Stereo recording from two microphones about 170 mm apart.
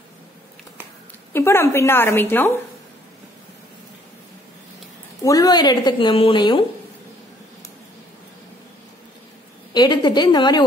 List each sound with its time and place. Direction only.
1.3 s a woman's voice: 15° left (ahead or behind)
5.2 s speech: 20° left (ahead or behind)
9.8 s speech: 25° left (ahead or behind)